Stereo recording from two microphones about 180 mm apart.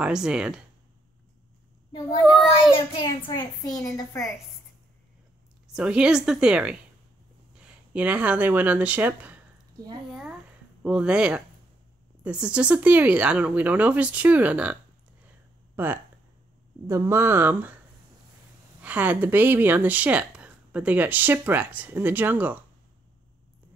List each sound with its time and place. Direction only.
0.0 s a woman's voice: 5° right (ahead or behind)
2.7 s a child's voice: 30° left (ahead or behind)
5.7 s a woman's voice: 5° right (ahead or behind)
10.8 s a woman's voice: 5° right (ahead or behind)
15.7 s a sound: 10° right (ahead or behind)
16.8 s speech: 15° right (ahead or behind)
18.8 s speech: 10° right (ahead or behind)